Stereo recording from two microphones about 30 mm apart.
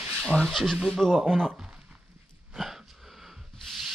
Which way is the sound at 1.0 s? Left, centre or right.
Centre.